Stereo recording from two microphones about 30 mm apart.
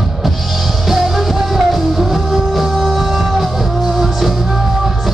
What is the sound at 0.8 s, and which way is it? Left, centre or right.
Music, centre.